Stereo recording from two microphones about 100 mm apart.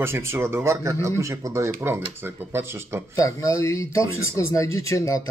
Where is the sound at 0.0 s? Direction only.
25° right (ahead or behind).